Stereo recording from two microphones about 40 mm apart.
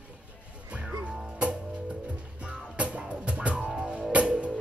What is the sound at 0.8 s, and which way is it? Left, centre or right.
Music, centre.